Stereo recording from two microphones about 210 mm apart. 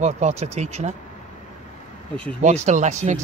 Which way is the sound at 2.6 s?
35° right (ahead or behind).